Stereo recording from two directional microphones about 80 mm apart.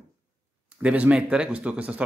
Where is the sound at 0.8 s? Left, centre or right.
Centre.